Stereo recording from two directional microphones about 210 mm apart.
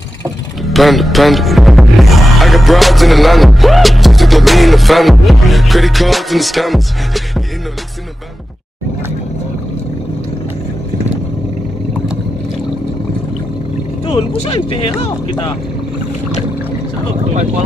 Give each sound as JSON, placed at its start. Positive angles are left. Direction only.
{"t": 0.7, "sound": "music", "side_deg": 0}
{"t": 14.0, "sound": "speech", "side_deg": 25}